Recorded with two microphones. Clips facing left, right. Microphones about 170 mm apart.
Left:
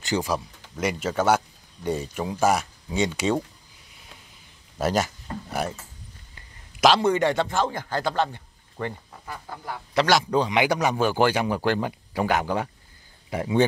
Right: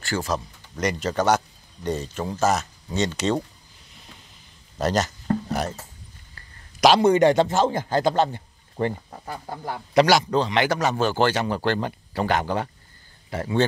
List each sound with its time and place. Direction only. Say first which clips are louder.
0.0 s a man's voice: left 1 dB; 15° left (ahead or behind)
4.7 s a sound: right 1 dB; 10° left (ahead or behind)
7.0 s a man's voice: right 5 dB; 20° right (ahead or behind); by 9.8 s 35° right (ahead or behind)
10.3 s a man's voice: even; 10° left (ahead or behind)